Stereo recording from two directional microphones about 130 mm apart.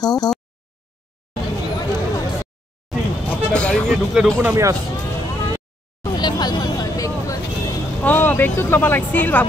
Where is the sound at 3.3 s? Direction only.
10° left (ahead or behind).